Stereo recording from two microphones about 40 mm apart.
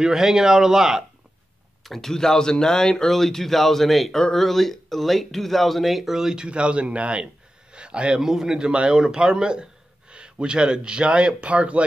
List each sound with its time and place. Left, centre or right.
0.0 s speech: centre
2.0 s speech: centre
6.1 s speech: centre
6.4 s speech: right
7.7 s a sound: right
8.2 s speech: centre; by 11.8 s right